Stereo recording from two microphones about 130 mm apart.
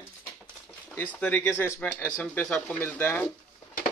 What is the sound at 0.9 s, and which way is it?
Speech, 15° left (ahead or behind).